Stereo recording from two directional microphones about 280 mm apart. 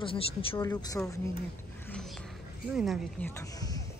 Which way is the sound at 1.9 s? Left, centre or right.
Centre.